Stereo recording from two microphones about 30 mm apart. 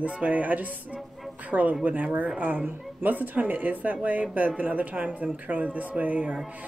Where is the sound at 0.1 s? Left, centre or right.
Right.